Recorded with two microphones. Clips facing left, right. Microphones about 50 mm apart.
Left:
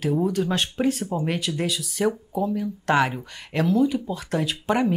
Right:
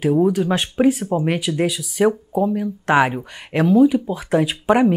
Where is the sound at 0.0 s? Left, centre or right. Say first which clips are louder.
Right 6 dB; centre.